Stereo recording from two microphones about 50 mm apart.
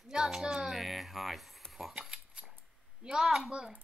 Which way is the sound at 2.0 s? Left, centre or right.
Centre.